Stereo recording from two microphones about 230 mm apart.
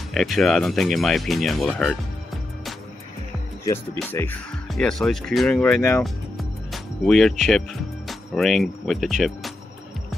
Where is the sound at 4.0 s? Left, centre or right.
Centre.